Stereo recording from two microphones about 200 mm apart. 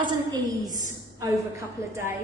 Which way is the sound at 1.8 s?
15° right (ahead or behind).